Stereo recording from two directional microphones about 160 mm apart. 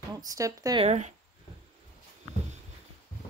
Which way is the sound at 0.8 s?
45° right (ahead or behind).